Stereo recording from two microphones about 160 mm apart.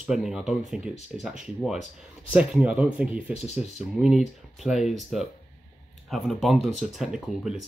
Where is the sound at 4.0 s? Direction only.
5° right (ahead or behind).